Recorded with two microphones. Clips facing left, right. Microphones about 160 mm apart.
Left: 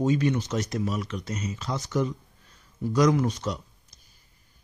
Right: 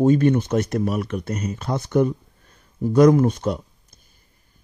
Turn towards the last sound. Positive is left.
turn(degrees=-55)  # may be behind; listen again after turning